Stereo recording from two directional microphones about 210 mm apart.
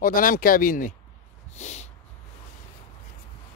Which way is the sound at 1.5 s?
35° left (ahead or behind).